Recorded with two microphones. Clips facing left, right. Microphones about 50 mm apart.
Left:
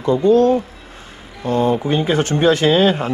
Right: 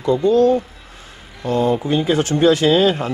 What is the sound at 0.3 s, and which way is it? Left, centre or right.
A man's voice, left.